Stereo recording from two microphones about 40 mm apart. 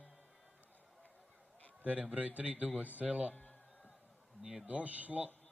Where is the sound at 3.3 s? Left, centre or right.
Left.